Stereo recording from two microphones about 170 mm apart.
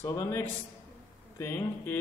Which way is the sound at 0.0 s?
15° left (ahead or behind).